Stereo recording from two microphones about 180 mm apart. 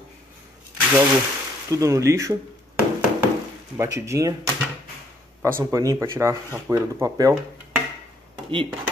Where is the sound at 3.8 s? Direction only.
15° right (ahead or behind).